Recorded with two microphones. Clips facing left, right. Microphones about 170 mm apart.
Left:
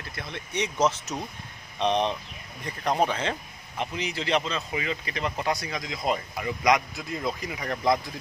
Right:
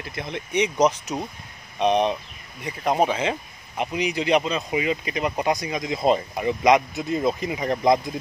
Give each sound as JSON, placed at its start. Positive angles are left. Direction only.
{"t": 0.1, "sound": "speech", "side_deg": -20}